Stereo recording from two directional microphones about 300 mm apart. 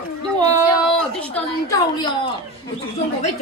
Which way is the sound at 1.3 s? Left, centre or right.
Centre.